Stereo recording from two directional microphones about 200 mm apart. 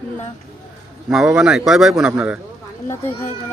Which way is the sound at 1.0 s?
5° right (ahead or behind).